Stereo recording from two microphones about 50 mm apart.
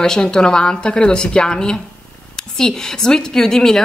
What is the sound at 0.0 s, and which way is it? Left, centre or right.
A woman's voice, centre.